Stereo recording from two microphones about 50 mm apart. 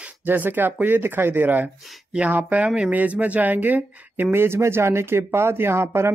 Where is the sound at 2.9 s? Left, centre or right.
Right.